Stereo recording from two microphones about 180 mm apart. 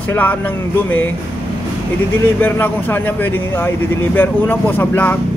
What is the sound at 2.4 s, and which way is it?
Speech, 10° left (ahead or behind).